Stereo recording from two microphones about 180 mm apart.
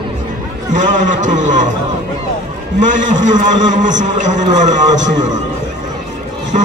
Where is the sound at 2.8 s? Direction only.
45° right (ahead or behind).